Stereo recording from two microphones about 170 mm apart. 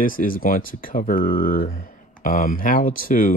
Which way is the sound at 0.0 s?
55° left (ahead or behind).